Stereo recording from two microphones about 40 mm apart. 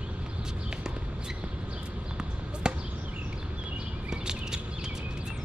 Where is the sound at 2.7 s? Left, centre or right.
Centre.